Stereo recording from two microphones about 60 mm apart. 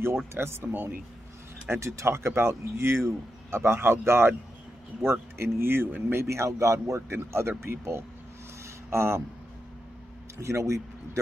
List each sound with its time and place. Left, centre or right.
0.3 s speech: right
1.7 s speech: right
6.2 s speech: right
10.4 s speech: right